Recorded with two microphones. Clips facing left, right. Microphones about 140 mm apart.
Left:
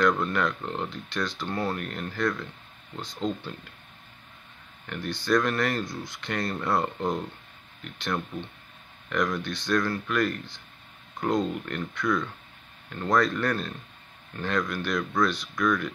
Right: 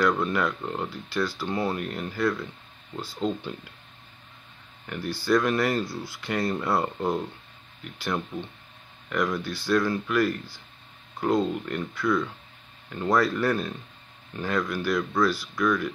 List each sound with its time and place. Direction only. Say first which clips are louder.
0.0 s speech: even; 5° right (ahead or behind)
4.8 s speech: right 2 dB; 5° right (ahead or behind)
9.1 s speech: right 1 dB; 5° right (ahead or behind)